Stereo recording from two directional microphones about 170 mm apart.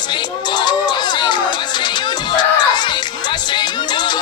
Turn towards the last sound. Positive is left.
turn(degrees=25)  # may be behind; listen again after turning